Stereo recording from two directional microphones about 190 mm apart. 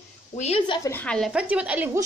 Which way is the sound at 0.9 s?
5° left (ahead or behind).